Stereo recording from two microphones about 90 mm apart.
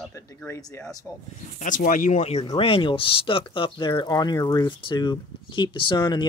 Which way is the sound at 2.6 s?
75° left (ahead or behind).